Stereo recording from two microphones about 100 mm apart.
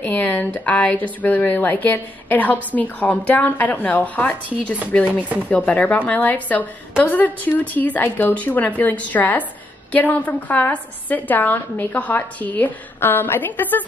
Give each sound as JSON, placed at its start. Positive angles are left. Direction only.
{"t": 0.0, "sound": "speech", "side_deg": 20}